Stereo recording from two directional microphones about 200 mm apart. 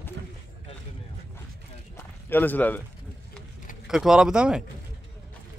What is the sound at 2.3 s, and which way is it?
Speech, 10° left (ahead or behind).